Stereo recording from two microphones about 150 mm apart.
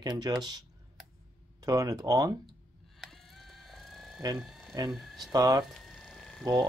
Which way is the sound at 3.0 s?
Centre (ahead or behind).